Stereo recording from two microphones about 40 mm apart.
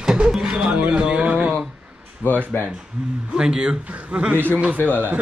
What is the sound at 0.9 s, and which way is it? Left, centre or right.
Music, right.